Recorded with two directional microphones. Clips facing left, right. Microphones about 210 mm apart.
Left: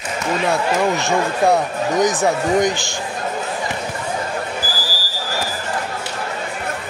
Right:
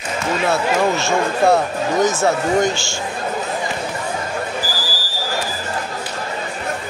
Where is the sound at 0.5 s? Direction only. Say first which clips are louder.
Right 1 dB; 15° left (ahead or behind).